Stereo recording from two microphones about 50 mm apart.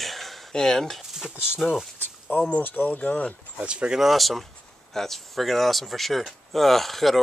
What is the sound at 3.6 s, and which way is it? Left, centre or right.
Speech, right.